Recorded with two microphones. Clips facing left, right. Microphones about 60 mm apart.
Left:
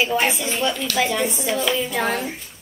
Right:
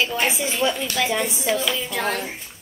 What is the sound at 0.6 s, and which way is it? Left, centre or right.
A woman's voice, centre.